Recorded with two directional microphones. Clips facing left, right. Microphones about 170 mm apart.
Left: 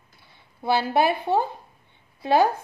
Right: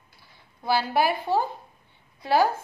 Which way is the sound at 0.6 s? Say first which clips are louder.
Left 2 dB; 25° left (ahead or behind).